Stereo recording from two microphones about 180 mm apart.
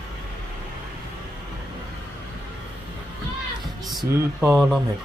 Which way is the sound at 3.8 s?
Centre (ahead or behind).